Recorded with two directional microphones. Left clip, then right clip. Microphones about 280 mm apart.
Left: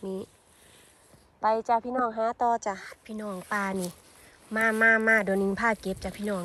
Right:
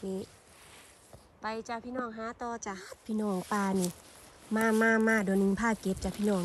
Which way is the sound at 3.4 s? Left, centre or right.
Centre.